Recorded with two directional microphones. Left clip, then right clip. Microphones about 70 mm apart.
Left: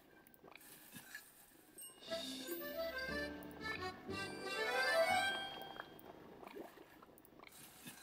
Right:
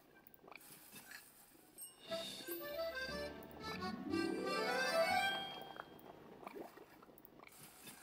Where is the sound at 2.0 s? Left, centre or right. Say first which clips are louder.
Even; left.